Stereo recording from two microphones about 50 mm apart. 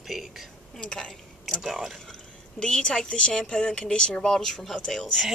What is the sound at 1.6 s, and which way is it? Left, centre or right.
Speech, centre.